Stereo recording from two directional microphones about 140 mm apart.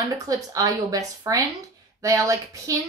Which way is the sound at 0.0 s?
25° right (ahead or behind).